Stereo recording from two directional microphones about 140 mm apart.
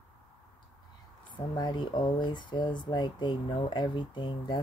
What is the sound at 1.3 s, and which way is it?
Speech, 30° left (ahead or behind).